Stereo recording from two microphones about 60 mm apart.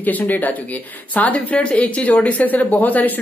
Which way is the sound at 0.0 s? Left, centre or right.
Left.